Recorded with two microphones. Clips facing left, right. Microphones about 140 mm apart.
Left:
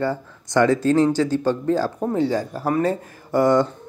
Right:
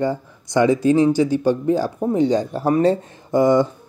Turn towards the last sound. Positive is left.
turn(degrees=-15)  # may be behind; listen again after turning